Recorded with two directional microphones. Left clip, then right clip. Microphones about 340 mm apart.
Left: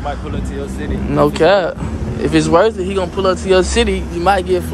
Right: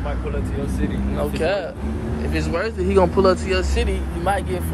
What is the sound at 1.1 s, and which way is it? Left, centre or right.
Speech, left.